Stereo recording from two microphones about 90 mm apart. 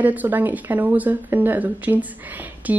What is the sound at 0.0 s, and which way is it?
A woman's voice, 20° right (ahead or behind).